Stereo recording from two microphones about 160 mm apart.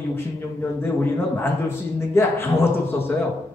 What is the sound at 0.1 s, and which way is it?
A man's voice, 15° left (ahead or behind).